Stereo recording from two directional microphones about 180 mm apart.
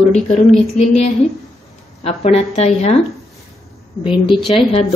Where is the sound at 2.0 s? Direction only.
35° left (ahead or behind).